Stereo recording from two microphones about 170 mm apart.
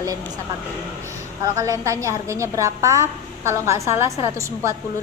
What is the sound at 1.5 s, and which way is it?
A woman's voice, 20° right (ahead or behind).